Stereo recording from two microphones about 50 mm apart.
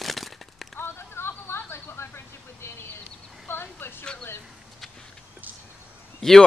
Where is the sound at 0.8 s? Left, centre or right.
Left.